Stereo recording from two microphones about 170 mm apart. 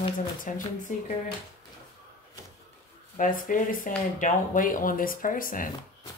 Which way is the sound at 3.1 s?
50° left (ahead or behind).